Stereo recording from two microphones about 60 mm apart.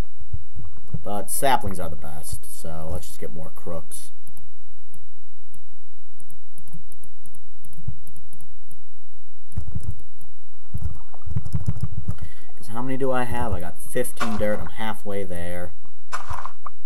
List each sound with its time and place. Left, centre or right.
1.0 s speech: centre
9.5 s computer keyboard: centre
11.0 s boat: centre
11.4 s vehicle: centre
12.2 s speech: centre
16.1 s a sound: centre